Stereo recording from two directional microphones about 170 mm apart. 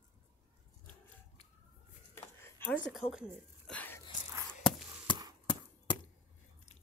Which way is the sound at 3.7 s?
10° left (ahead or behind).